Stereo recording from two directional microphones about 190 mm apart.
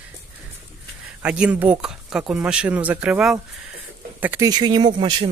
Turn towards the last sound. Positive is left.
turn(degrees=-25)  # may be behind; listen again after turning